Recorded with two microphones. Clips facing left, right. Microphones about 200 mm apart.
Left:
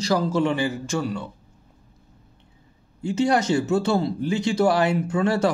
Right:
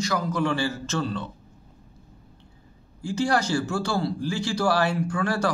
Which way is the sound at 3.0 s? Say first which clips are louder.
Left 3 dB; 20° left (ahead or behind).